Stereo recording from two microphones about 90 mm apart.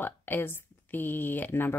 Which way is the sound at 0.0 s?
20° left (ahead or behind).